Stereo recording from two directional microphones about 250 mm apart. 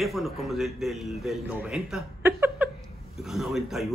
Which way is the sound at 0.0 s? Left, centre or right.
Centre.